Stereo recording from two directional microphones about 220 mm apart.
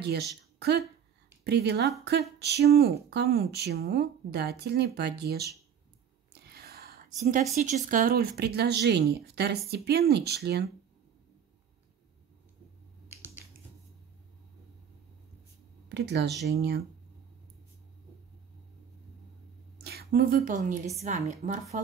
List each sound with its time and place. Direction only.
0.0 s speech: 50° right (ahead or behind)
6.5 s whispering: 45° right (ahead or behind)
7.5 s speech: 35° right (ahead or behind)
15.9 s speech: 50° right (ahead or behind)
19.8 s a woman's voice: 45° right (ahead or behind)